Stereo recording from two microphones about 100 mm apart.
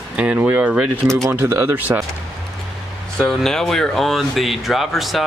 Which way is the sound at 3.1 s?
5° left (ahead or behind).